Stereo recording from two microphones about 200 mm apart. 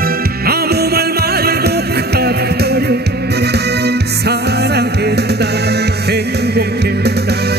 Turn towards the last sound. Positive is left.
turn(degrees=-55)  # may be behind; listen again after turning